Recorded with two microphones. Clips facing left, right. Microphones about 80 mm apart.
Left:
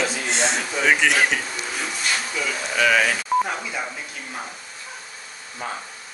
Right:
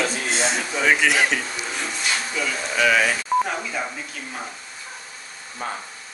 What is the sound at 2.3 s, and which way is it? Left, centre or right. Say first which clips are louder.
Speech: right 1 dB; centre.